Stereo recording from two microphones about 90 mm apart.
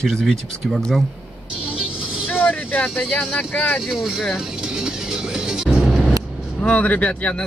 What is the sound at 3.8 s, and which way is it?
Speech, 5° right (ahead or behind).